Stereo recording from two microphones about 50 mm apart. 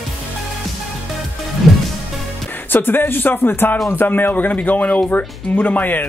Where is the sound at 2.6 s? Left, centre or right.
Left.